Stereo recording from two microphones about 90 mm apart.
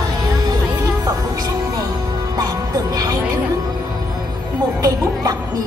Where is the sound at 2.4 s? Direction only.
45° right (ahead or behind).